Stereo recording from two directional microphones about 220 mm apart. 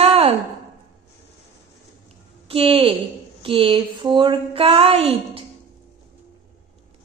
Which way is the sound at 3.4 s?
25° right (ahead or behind).